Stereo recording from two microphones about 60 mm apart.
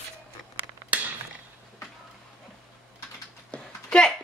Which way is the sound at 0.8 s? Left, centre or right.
Right.